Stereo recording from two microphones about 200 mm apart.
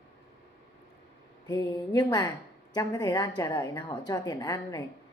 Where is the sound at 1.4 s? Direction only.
20° left (ahead or behind).